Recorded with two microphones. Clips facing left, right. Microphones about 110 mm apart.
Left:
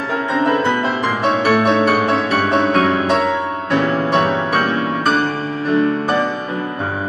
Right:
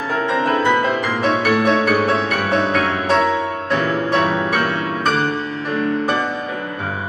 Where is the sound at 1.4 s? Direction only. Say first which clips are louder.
Left 4 dB; 30° left (ahead or behind).